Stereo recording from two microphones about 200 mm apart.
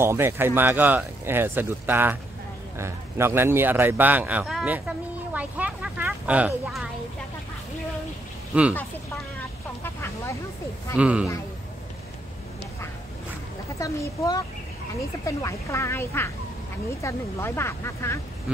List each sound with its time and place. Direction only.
0.0 s speech: 10° right (ahead or behind)
8.5 s speech: 5° right (ahead or behind)
9.8 s vehicle: 10° left (ahead or behind)
11.0 s speech: 5° right (ahead or behind)
13.7 s speech: 15° left (ahead or behind)